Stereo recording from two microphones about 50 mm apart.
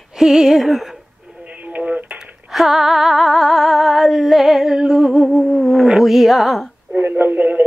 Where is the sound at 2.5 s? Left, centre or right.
Centre.